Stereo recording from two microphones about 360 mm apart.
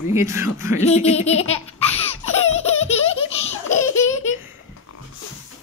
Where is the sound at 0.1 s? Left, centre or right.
Centre.